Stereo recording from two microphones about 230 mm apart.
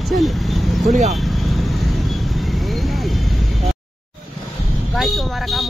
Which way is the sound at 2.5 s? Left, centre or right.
Centre.